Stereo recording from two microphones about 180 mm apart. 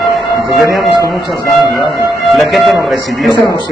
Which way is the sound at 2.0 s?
Centre (ahead or behind).